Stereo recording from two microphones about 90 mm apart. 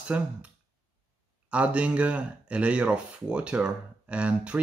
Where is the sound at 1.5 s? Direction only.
15° right (ahead or behind).